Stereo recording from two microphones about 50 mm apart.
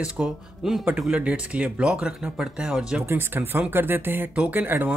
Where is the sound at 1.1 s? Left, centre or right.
Right.